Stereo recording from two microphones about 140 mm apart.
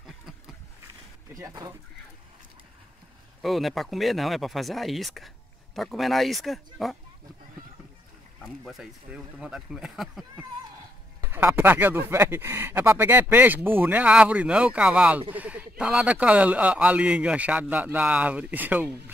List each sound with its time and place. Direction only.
1.3 s speech: 25° right (ahead or behind)
3.4 s speech: centre (ahead or behind)
8.6 s speech: 5° right (ahead or behind)
11.1 s speech: 15° right (ahead or behind)
15.3 s a sound: 10° right (ahead or behind)
15.8 s speech: 5° right (ahead or behind)